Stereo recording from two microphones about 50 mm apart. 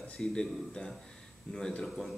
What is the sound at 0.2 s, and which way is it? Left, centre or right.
Speech, centre.